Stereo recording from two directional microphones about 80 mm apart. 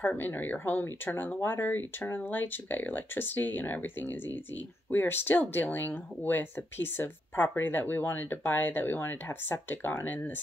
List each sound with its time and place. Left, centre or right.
0.0 s speech: left
4.9 s speech: left